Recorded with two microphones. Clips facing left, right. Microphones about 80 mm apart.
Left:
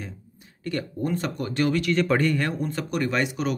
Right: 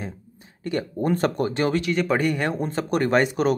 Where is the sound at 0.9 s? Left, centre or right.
Right.